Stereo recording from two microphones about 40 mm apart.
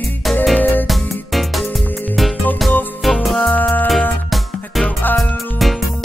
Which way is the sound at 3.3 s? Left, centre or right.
Left.